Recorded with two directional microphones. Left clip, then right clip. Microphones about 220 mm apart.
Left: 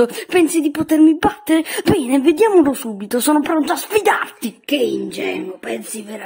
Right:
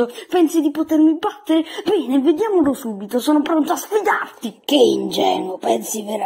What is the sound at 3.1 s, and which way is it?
Speech, 30° left (ahead or behind).